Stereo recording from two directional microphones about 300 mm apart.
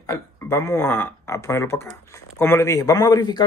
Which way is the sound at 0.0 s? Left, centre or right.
Centre.